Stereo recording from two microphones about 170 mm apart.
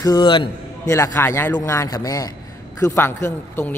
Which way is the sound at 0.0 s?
25° left (ahead or behind).